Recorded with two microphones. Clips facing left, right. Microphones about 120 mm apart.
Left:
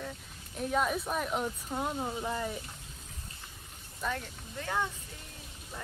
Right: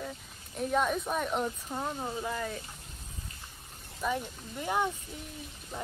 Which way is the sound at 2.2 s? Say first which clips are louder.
Even; 15° left (ahead or behind).